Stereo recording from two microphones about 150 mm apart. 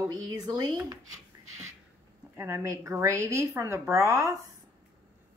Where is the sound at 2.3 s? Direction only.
20° right (ahead or behind).